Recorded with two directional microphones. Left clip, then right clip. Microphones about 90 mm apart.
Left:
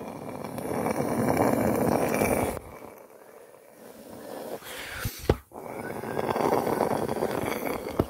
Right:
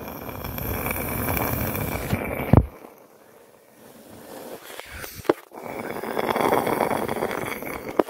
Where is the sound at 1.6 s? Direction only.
30° left (ahead or behind).